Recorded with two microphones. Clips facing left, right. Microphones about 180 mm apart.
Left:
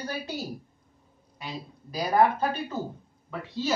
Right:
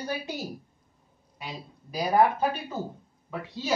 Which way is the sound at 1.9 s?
10° right (ahead or behind).